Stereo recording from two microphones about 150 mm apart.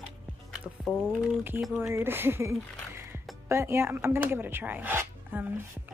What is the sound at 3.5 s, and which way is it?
Speech, 20° right (ahead or behind).